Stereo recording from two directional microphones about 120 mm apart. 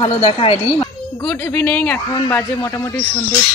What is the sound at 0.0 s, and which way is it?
Speech, 50° left (ahead or behind).